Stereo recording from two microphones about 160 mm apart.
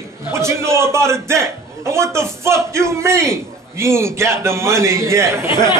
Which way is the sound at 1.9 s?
15° right (ahead or behind).